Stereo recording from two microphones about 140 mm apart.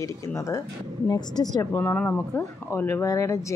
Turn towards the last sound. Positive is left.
turn(degrees=20)  # may be behind; listen again after turning